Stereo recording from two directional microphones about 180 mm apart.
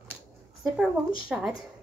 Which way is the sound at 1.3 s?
5° right (ahead or behind).